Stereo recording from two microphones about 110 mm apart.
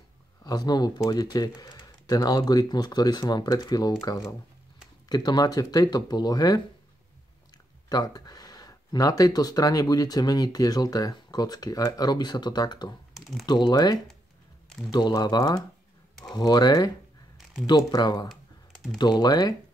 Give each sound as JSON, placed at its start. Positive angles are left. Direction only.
{"t": 0.4, "sound": "speech", "side_deg": 35}
{"t": 7.9, "sound": "speech", "side_deg": 35}
{"t": 13.1, "sound": "typing", "side_deg": 0}
{"t": 13.5, "sound": "speech", "side_deg": 40}
{"t": 18.3, "sound": "computer keyboard", "side_deg": 0}
{"t": 18.9, "sound": "speech", "side_deg": 40}